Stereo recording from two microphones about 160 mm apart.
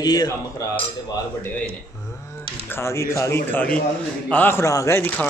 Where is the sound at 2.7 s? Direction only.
15° left (ahead or behind).